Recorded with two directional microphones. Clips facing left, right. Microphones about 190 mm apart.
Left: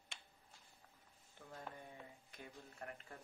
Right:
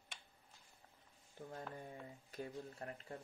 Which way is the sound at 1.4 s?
35° right (ahead or behind).